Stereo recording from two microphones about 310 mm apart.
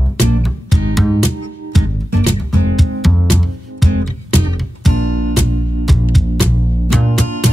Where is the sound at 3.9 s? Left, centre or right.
Right.